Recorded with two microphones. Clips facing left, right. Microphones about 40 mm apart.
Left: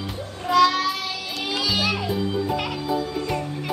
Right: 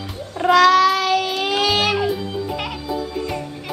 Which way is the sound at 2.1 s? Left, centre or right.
Centre.